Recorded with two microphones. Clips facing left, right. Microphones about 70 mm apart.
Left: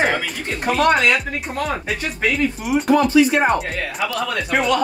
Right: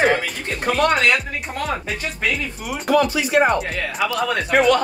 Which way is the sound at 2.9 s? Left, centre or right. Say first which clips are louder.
Left 2 dB; left.